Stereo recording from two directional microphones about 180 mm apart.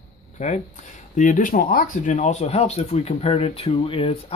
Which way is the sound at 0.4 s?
40° left (ahead or behind).